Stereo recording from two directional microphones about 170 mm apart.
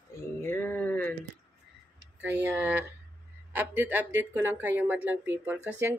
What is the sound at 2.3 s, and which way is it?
Speech, 10° right (ahead or behind).